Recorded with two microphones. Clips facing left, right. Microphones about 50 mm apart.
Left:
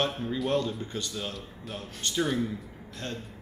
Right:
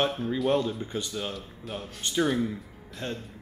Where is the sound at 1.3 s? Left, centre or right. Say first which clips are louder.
Right 2 dB; centre.